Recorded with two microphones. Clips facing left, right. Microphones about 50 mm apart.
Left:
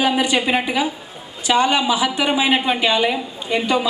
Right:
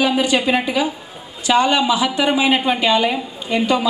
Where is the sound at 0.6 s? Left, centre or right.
Centre.